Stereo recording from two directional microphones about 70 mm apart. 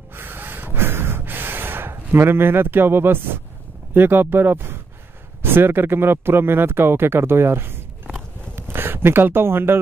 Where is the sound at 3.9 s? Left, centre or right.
Right.